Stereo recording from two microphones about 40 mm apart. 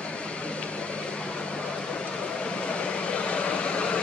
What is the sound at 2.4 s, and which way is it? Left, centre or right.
Vehicle, left.